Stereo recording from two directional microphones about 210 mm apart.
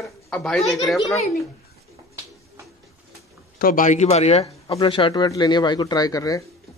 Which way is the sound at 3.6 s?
40° left (ahead or behind).